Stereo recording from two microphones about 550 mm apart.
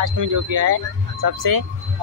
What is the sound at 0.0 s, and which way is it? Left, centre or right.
Speech, right.